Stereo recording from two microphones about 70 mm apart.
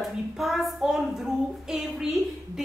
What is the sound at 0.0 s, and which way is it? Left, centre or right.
Child singing, centre.